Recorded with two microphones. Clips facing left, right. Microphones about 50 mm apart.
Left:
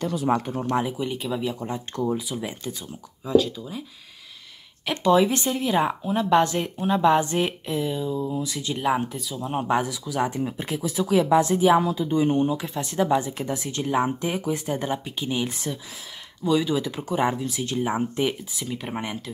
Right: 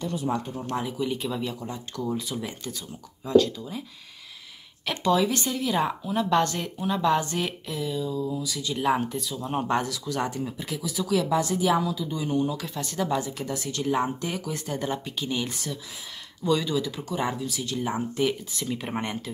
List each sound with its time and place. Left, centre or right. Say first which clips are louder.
0.4 s speech: left 5 dB; left
0.8 s speech: left 1 dB; centre
1.6 s speech: left 5 dB; left
2.1 s speech: left 2 dB; centre
3.3 s speech: even; centre
5.1 s speech: left 5 dB; left
6.8 s speech: left 4 dB; left
8.7 s speech: even; centre
10.6 s speech: left 4 dB; left
12.4 s speech: left 4 dB; left; by 16.7 s centre
16.7 s speech: left 3 dB; left
18.5 s speech: even; centre